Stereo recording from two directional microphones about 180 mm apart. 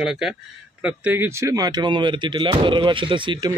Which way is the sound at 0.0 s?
5° right (ahead or behind).